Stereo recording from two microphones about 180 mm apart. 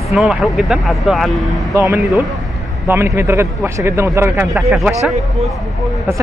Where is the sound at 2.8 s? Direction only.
15° right (ahead or behind).